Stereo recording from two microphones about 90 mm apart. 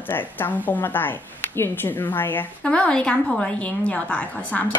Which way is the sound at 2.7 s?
10° left (ahead or behind).